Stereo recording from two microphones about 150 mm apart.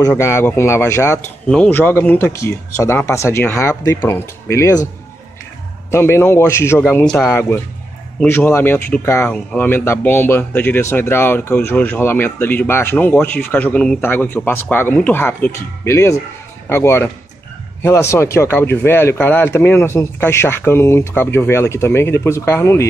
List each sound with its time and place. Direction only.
0.2 s speech: 20° left (ahead or behind)
5.9 s speech: 15° left (ahead or behind)